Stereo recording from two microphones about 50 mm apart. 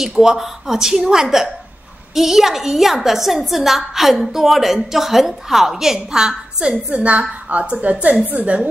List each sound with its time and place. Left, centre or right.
0.0 s a woman's voice: centre; by 8.6 s right